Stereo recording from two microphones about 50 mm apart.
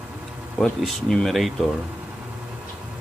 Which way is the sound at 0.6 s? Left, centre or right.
Centre.